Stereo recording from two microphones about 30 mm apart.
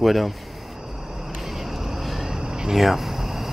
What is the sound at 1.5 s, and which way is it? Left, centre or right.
Vehicle, centre.